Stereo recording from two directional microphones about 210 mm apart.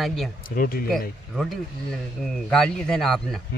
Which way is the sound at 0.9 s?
Centre (ahead or behind).